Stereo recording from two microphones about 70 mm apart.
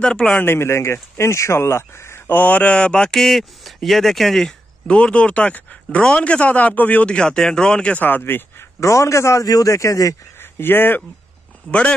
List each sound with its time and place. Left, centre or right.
0.0 s speech: centre
0.4 s speech: left; by 4.6 s centre
4.8 s speech: centre
8.0 s a man's voice: left
10.4 s speech: left